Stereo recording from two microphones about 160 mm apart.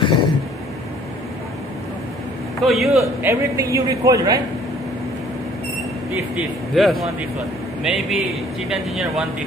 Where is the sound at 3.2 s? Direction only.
20° right (ahead or behind).